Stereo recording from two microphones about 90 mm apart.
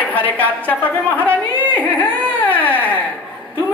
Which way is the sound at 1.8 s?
15° left (ahead or behind).